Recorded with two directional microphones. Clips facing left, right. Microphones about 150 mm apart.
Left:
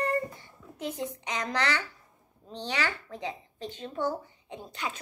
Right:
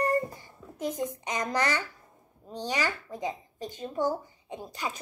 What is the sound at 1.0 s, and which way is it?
Speech, 50° right (ahead or behind).